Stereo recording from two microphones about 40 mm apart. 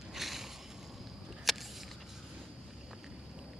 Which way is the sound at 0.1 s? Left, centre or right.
Centre.